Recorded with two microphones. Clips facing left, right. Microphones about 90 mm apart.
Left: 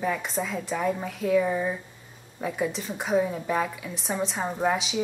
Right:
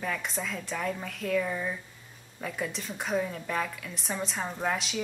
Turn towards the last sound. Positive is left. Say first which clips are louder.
# left 5 dB
turn(degrees=5)  # may be behind; listen again after turning